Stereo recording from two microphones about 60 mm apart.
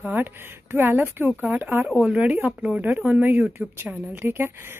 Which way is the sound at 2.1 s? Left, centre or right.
Right.